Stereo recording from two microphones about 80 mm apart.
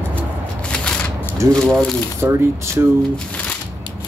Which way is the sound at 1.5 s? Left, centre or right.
Centre.